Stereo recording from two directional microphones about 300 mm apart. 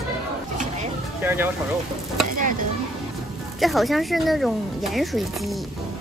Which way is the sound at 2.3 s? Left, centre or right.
Right.